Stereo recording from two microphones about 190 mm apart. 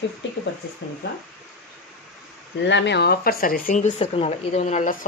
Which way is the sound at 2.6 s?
65° left (ahead or behind).